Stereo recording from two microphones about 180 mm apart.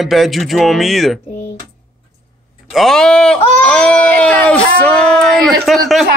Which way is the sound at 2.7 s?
Centre (ahead or behind).